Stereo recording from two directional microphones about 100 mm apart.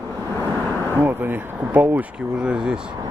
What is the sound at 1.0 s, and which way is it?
Speech, 20° right (ahead or behind).